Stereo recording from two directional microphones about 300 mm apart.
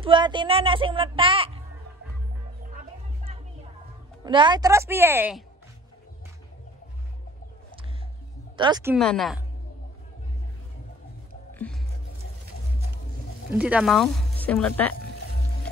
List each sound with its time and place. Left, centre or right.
0.0 s a child's voice: centre
4.2 s a child's voice: centre
8.5 s a child's voice: centre
8.9 s speech: centre
11.5 s music: centre
13.5 s speech: centre